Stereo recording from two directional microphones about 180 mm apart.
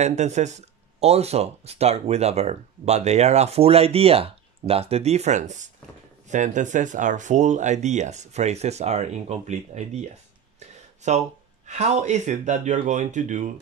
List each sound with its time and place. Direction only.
0.0 s speech: 40° right (ahead or behind)
11.1 s speech: 40° right (ahead or behind)